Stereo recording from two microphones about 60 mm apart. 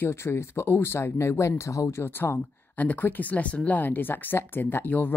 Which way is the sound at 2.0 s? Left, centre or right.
Left.